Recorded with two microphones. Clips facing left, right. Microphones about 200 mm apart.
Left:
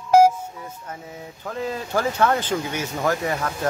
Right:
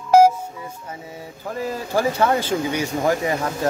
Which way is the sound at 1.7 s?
10° right (ahead or behind).